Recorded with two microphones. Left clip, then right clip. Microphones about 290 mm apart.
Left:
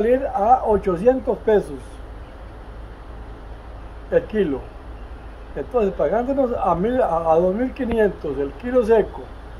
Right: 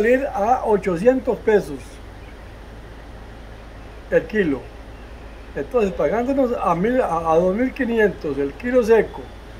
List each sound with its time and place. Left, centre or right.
0.0 s speech: centre
4.1 s speech: centre
5.6 s speech: centre